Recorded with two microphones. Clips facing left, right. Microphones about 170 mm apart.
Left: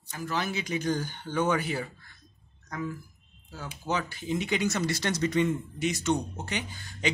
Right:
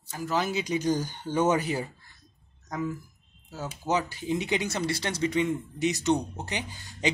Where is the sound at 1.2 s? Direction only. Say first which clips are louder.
Right 3 dB; 45° right (ahead or behind).